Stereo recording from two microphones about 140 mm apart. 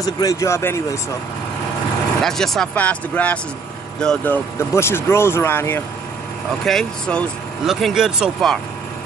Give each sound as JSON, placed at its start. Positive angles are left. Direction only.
{"t": 0.0, "sound": "speech", "side_deg": 25}
{"t": 2.2, "sound": "speech", "side_deg": 5}
{"t": 6.6, "sound": "speech", "side_deg": 5}